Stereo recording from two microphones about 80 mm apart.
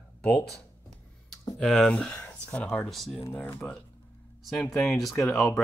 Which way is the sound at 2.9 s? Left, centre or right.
Centre.